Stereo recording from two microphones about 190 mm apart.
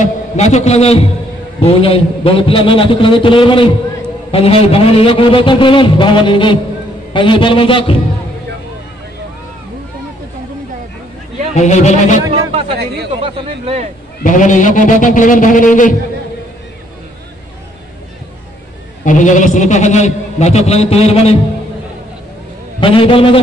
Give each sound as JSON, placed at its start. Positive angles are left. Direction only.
{"t": 0.0, "sound": "a man's voice", "side_deg": 35}
{"t": 1.6, "sound": "a sound", "side_deg": 30}
{"t": 11.5, "sound": "a man's voice", "side_deg": 35}
{"t": 12.7, "sound": "speech", "side_deg": -60}
{"t": 13.2, "sound": "speech", "side_deg": -30}
{"t": 14.2, "sound": "a man's voice", "side_deg": 40}
{"t": 19.0, "sound": "a man's voice", "side_deg": 40}
{"t": 22.8, "sound": "a sound", "side_deg": 25}